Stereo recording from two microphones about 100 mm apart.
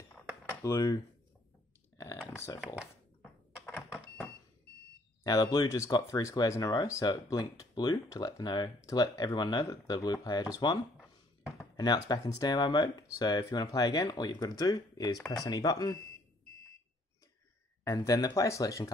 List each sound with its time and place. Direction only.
0.5 s speech: 30° left (ahead or behind)
2.3 s speech: 25° left (ahead or behind)
3.7 s a sound: 15° left (ahead or behind)
5.2 s speech: 40° left (ahead or behind)
6.6 s speech: 45° left (ahead or behind)
11.7 s a sound: 45° left (ahead or behind)
12.1 s speech: 40° left (ahead or behind)
13.4 s speech: 35° left (ahead or behind)
17.9 s speech: 40° left (ahead or behind)